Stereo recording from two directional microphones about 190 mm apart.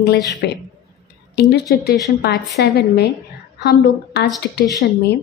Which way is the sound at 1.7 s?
55° left (ahead or behind).